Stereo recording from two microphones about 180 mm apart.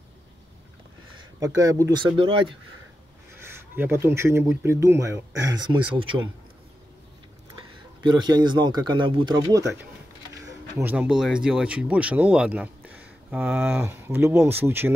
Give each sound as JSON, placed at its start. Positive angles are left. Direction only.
{"t": 1.4, "sound": "speech", "side_deg": -20}
{"t": 3.3, "sound": "speech", "side_deg": -10}
{"t": 8.0, "sound": "speech", "side_deg": -25}
{"t": 10.8, "sound": "speech", "side_deg": -10}